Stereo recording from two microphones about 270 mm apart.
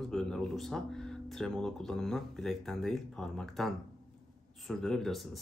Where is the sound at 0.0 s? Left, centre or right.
Centre.